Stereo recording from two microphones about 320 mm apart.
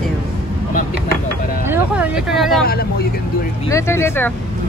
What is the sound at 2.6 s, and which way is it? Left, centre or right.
Speech, left.